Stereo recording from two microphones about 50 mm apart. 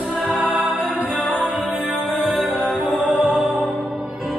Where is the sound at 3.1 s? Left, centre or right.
Centre.